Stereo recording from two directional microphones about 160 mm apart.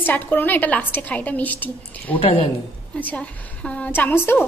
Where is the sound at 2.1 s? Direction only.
35° left (ahead or behind).